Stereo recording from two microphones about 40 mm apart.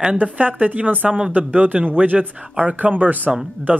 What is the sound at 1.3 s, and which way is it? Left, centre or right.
Speech, right.